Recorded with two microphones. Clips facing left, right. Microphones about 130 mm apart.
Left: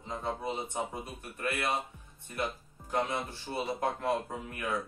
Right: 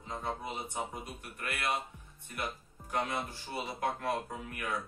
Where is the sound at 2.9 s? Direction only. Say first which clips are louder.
Left 2 dB; 25° left (ahead or behind).